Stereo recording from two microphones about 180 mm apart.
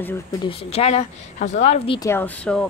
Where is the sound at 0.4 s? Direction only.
30° left (ahead or behind).